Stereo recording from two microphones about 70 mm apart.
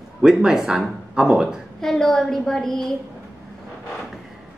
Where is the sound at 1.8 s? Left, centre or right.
Centre.